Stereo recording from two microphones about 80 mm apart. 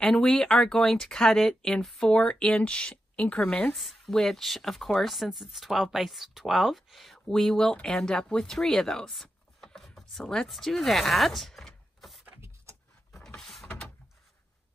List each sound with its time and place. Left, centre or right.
0.0 s speech: centre
3.7 s speech: centre
12.3 s vehicle: right
13.1 s vehicle: centre
13.7 s door: centre